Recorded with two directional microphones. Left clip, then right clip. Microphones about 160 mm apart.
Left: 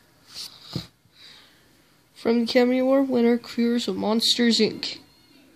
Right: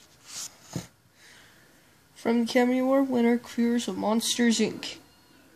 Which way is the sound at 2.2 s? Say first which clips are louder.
Left 4 dB; 45° left (ahead or behind).